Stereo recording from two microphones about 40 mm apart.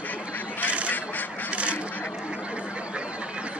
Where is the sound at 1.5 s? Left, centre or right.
Right.